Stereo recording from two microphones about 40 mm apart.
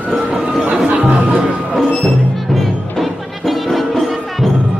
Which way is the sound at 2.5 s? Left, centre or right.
Centre.